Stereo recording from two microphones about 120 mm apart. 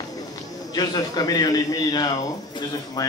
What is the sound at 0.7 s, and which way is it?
A man's voice, 35° left (ahead or behind).